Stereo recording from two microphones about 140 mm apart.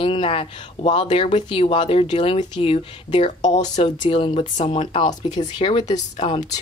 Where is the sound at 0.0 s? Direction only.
40° left (ahead or behind).